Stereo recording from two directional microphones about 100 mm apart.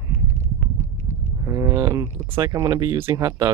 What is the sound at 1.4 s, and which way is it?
Speech, 30° right (ahead or behind).